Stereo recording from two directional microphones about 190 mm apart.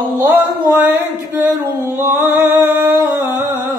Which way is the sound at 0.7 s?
10° right (ahead or behind).